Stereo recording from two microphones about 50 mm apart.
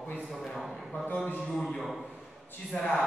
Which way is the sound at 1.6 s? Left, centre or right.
Centre.